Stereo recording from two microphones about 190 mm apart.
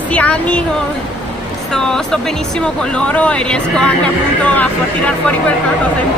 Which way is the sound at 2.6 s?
5° left (ahead or behind).